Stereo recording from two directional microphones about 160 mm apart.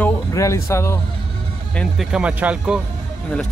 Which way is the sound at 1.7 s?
5° left (ahead or behind).